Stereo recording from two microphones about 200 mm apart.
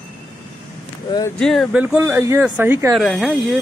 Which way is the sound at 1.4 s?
Centre (ahead or behind).